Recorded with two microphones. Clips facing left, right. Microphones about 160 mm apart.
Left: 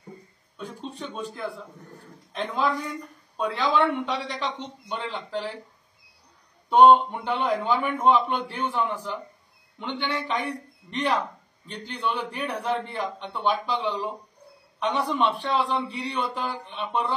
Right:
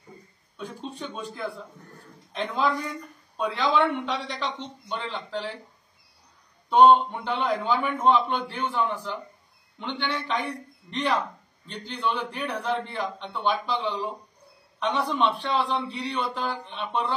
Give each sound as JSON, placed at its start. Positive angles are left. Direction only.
{"t": 0.6, "sound": "speech", "side_deg": 0}
{"t": 6.7, "sound": "a man's voice", "side_deg": 5}